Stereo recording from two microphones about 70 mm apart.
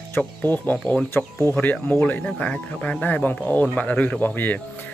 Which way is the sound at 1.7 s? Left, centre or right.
Centre.